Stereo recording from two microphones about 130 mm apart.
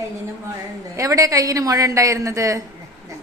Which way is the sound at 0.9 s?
25° right (ahead or behind).